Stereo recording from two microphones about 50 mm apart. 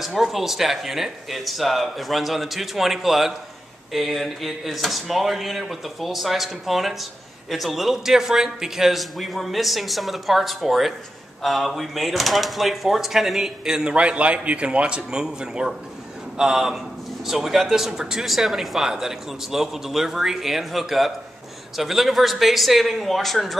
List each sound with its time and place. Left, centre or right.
0.0 s speech: centre
13.7 s a man's voice: centre